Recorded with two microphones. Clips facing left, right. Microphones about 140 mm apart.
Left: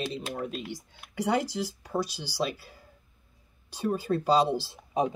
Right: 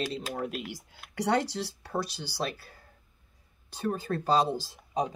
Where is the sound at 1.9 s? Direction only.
60° right (ahead or behind).